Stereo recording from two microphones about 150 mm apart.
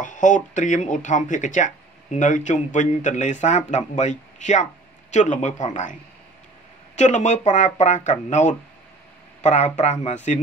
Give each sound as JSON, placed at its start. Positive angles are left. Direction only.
{"t": 0.0, "sound": "speech", "side_deg": 55}
{"t": 7.0, "sound": "speech", "side_deg": 55}